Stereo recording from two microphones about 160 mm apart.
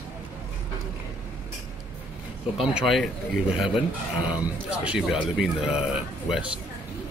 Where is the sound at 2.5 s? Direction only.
Centre (ahead or behind).